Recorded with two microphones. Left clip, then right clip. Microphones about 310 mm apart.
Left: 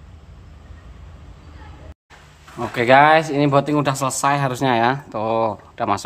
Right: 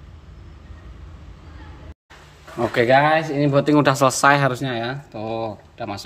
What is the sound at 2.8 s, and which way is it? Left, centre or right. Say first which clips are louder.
Speech: left 5 dB; centre.